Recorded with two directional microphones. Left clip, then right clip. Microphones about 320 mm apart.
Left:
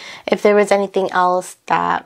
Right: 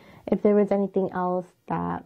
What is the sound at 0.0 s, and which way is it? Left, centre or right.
Speech, centre.